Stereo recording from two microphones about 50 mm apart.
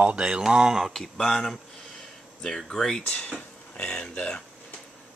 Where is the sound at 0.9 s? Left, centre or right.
Centre.